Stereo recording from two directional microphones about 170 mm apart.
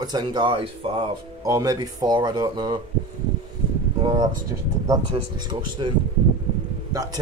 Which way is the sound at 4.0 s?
25° right (ahead or behind).